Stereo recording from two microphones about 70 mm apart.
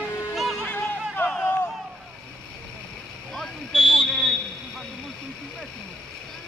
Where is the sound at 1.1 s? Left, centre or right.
Left.